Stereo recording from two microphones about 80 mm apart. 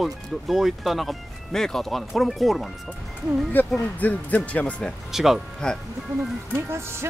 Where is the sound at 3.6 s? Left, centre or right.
Left.